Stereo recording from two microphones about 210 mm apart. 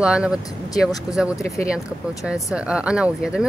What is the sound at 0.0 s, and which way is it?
Speech, 5° right (ahead or behind).